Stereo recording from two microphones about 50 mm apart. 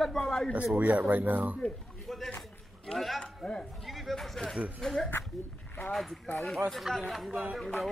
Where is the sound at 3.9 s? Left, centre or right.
Centre.